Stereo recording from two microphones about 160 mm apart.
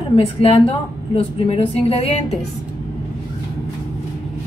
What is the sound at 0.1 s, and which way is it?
A woman's voice, 35° left (ahead or behind).